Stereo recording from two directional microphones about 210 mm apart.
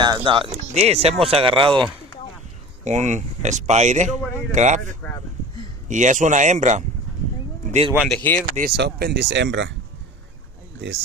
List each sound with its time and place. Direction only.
0.0 s speech: 20° right (ahead or behind)
2.8 s speech: 35° right (ahead or behind)
8.1 s speech: 5° left (ahead or behind)
8.5 s speech: 50° right (ahead or behind)